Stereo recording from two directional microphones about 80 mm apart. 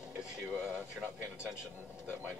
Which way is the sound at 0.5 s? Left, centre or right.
Centre.